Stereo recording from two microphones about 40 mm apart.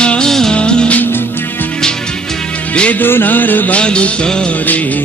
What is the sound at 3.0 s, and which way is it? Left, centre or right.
Music, left.